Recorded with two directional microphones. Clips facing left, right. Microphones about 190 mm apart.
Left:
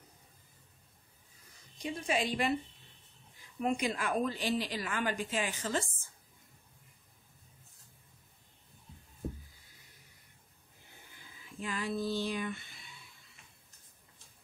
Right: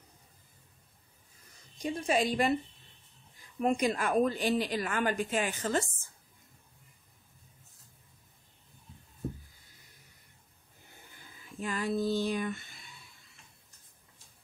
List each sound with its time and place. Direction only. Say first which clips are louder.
1.8 s a woman's voice: right 4 dB; 40° right (ahead or behind)
3.6 s a woman's voice: right 4 dB; 45° right (ahead or behind)
11.6 s a woman's voice: right 4 dB; 45° right (ahead or behind)